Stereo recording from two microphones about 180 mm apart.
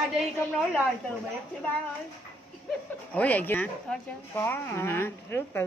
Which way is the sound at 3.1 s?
10° left (ahead or behind).